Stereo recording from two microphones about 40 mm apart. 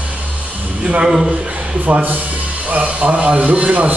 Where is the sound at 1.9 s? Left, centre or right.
Right.